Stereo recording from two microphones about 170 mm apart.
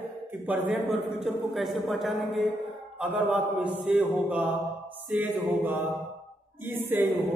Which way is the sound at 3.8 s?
5° right (ahead or behind).